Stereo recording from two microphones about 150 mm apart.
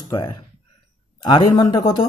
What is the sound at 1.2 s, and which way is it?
Speech, 25° left (ahead or behind).